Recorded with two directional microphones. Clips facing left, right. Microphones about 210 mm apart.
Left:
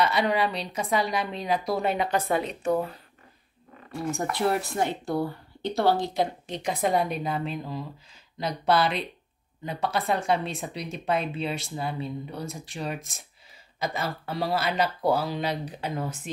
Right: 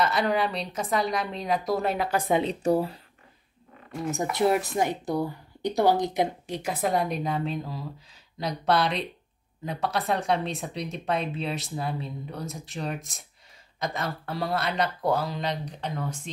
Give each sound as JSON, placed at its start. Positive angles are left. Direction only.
{"t": 0.0, "sound": "speech", "side_deg": 0}
{"t": 2.4, "sound": "speech", "side_deg": -30}
{"t": 4.1, "sound": "speech", "side_deg": -20}